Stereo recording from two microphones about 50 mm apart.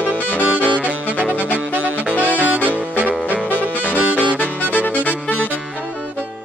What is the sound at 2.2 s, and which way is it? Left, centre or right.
Saxophone, right.